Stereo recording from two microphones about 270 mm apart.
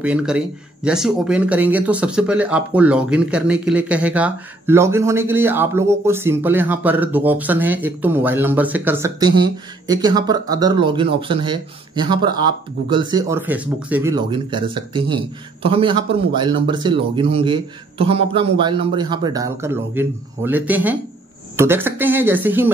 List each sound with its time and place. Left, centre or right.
0.0 s a man's voice: centre